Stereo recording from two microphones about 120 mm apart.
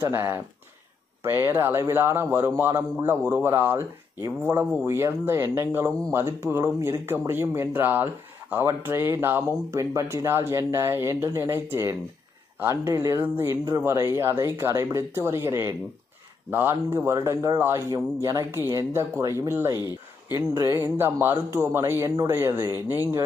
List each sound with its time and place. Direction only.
0.0 s speech: 20° right (ahead or behind)